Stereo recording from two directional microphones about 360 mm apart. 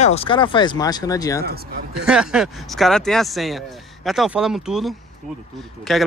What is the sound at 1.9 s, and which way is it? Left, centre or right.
Speech, centre.